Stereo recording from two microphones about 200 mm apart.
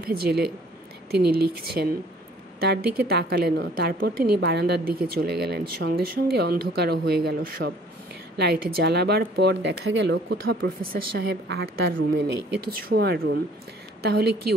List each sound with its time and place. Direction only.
0.0 s speech: 50° right (ahead or behind)